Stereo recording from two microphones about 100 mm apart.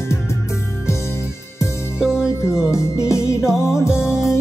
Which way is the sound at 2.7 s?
30° left (ahead or behind).